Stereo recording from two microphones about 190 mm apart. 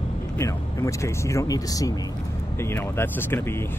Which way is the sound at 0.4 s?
15° left (ahead or behind).